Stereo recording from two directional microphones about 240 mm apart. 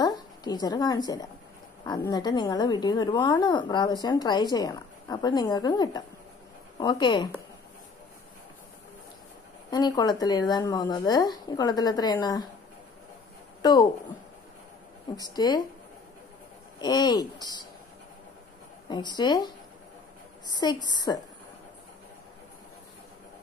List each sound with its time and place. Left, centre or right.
0.0 s a woman's voice: centre
9.7 s speech: centre
13.6 s a woman's voice: centre
15.2 s speech: centre
16.8 s speech: centre
18.9 s speech: centre
20.5 s speech: centre